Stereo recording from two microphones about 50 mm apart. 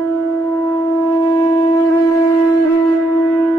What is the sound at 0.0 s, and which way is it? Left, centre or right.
Shofar, left.